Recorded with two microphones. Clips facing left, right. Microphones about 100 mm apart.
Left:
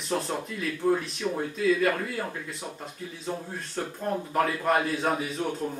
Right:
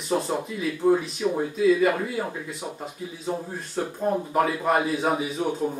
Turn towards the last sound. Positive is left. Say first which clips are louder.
# right 4 dB
turn(degrees=-5)  # may be behind; listen again after turning